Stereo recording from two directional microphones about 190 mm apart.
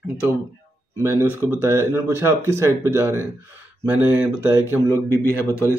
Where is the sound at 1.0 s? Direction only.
10° right (ahead or behind).